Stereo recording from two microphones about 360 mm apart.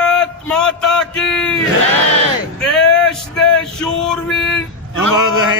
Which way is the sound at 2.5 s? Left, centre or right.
Centre.